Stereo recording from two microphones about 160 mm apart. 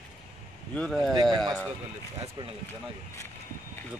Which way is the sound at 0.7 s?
5° left (ahead or behind).